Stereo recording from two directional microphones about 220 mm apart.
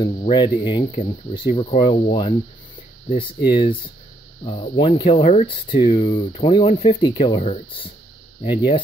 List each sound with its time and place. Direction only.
0.2 s speech: 20° left (ahead or behind)